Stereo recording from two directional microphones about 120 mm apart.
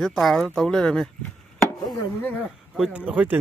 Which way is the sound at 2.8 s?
10° right (ahead or behind).